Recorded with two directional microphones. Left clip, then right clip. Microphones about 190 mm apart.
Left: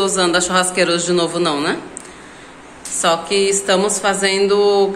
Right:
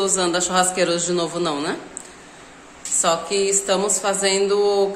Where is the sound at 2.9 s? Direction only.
10° right (ahead or behind).